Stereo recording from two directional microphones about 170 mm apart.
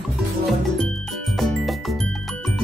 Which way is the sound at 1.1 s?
Centre (ahead or behind).